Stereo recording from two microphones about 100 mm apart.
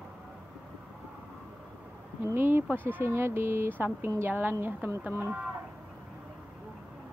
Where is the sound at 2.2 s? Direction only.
20° right (ahead or behind).